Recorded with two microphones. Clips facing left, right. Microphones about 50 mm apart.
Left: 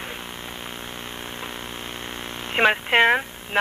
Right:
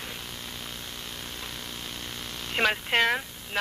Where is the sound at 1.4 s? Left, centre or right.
Left.